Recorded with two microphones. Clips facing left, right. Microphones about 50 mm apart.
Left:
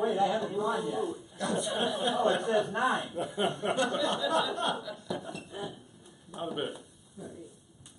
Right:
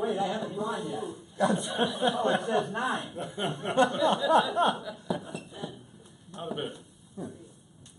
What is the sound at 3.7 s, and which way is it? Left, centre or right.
Speech, right.